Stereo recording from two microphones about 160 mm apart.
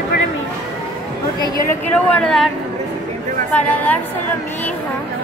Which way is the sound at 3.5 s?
10° left (ahead or behind).